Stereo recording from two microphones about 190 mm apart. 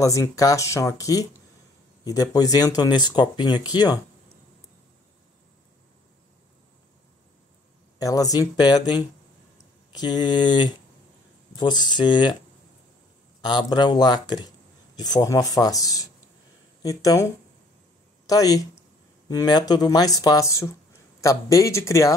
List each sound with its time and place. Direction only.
0.0 s speech: 15° left (ahead or behind)
8.0 s speech: 20° left (ahead or behind)
13.5 s speech: 25° left (ahead or behind)